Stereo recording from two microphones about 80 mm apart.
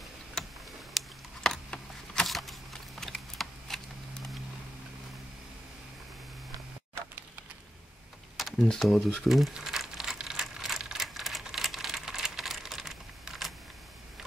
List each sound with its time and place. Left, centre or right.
0.4 s tick: centre
0.9 s a sound: centre
8.4 s computer keyboard: centre
8.6 s crumpling: centre